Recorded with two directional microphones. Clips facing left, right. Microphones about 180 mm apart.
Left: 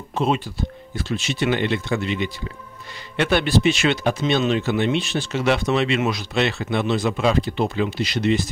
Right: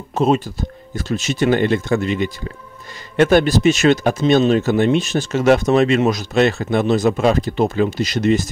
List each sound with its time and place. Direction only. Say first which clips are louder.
0.1 s speech: right 5 dB; 40° right (ahead or behind)